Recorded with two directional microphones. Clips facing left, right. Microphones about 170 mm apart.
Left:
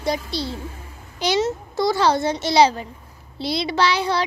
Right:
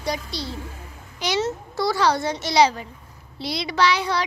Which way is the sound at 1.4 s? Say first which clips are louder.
Left 3 dB; 20° left (ahead or behind).